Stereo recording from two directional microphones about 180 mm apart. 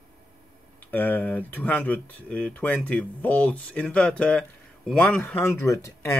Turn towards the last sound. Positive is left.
turn(degrees=15)  # may be behind; listen again after turning